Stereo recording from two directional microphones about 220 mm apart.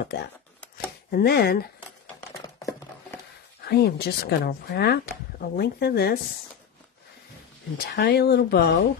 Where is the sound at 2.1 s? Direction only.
15° left (ahead or behind).